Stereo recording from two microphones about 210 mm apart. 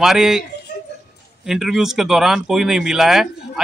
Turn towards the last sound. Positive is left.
turn(degrees=0)  # may be behind; listen again after turning